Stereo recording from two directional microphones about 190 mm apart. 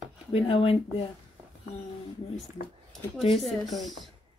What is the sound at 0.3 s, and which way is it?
Speech, 30° left (ahead or behind).